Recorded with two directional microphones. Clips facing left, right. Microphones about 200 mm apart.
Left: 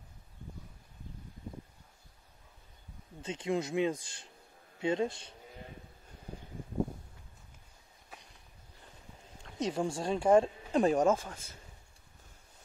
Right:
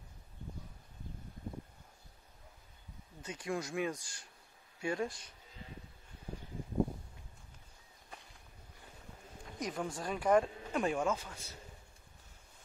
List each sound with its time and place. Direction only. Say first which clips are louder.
3.2 s speech: left 5 dB; 25° left (ahead or behind)
9.6 s speech: left 6 dB; 25° left (ahead or behind); by 11.5 s 50° left (ahead or behind)